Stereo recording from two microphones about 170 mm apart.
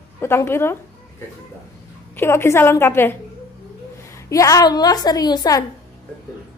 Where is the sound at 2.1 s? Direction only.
15° left (ahead or behind).